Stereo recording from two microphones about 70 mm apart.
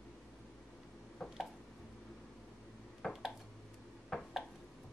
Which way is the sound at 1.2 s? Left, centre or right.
Centre.